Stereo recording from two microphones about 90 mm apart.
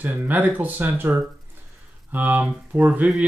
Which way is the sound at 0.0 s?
20° right (ahead or behind).